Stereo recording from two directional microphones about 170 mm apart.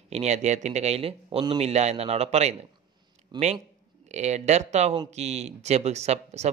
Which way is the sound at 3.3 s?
25° right (ahead or behind).